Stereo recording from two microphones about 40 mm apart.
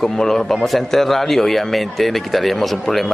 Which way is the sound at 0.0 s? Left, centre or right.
Centre.